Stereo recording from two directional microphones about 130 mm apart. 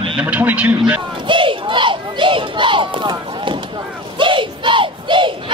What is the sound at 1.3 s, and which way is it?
Crowd, 40° right (ahead or behind).